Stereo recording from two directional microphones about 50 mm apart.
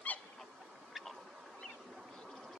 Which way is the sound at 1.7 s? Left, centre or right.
Centre.